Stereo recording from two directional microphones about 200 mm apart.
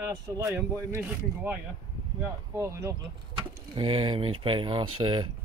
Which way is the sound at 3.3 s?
25° right (ahead or behind).